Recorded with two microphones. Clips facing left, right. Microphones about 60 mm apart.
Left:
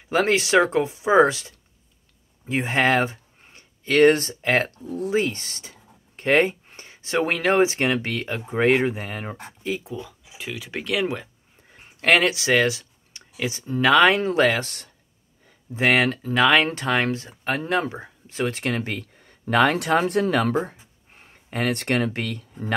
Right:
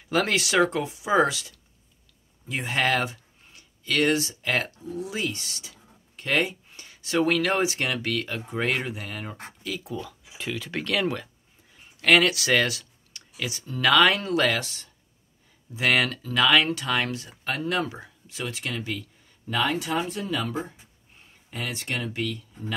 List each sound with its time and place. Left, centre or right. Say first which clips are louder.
0.1 s speech: left 5 dB; left
9.9 s speech: even; centre
12.0 s speech: left 1 dB; left
15.7 s speech: left 4 dB; left